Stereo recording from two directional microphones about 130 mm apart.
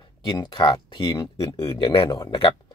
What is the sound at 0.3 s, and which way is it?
Speech, 35° left (ahead or behind).